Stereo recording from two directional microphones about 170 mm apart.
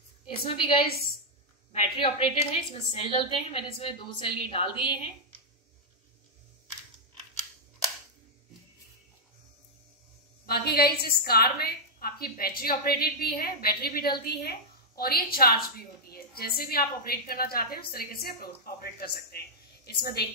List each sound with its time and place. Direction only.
0.3 s a woman's voice: 30° left (ahead or behind)
10.4 s a woman's voice: 65° left (ahead or behind)